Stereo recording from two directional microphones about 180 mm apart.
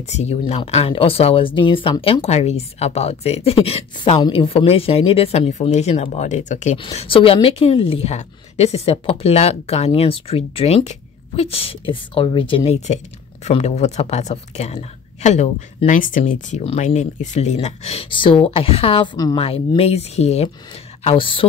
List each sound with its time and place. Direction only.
0.1 s a woman's voice: 35° left (ahead or behind)